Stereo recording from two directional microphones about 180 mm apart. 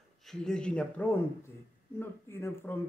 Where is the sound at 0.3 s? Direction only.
5° left (ahead or behind).